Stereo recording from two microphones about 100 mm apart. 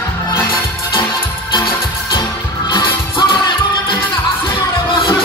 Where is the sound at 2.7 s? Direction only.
55° left (ahead or behind).